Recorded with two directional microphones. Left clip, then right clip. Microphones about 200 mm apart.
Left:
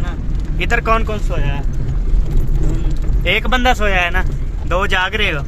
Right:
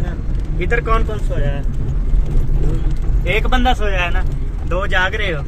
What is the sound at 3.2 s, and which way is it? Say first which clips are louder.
Speech: left 3 dB; 25° left (ahead or behind).